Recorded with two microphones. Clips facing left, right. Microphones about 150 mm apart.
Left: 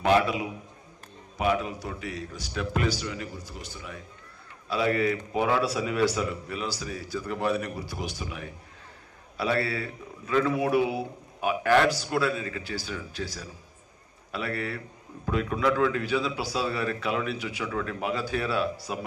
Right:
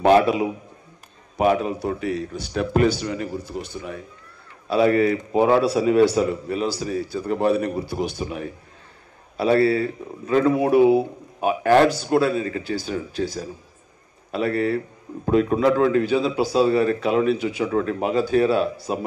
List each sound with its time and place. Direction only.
0.0 s a man's voice: 50° right (ahead or behind)
1.4 s a man's voice: 40° right (ahead or behind)
1.7 s a man's voice: 60° right (ahead or behind)
2.5 s a man's voice: 40° right (ahead or behind)
3.4 s a man's voice: 60° right (ahead or behind)
5.3 s a man's voice: 30° right (ahead or behind)